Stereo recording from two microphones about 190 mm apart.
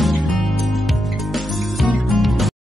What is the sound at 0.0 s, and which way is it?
Music, centre (ahead or behind).